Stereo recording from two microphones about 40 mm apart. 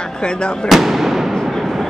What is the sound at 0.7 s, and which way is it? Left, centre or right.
Speech, centre.